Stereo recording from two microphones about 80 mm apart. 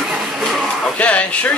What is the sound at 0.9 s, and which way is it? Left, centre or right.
Speech, centre.